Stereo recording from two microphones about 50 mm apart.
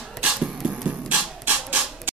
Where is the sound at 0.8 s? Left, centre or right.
Right.